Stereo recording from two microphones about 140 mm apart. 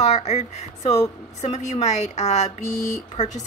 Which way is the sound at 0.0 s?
55° left (ahead or behind).